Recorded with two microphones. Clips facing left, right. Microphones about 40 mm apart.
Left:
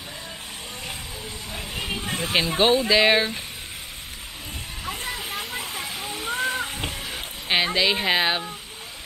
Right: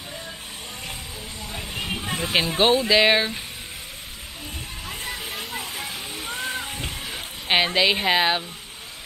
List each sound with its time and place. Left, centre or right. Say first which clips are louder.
1.5 s speech: even; centre
4.8 s waterfall: left 2 dB; centre
6.9 s a sound: even; centre
7.4 s a woman's voice: right 2 dB; centre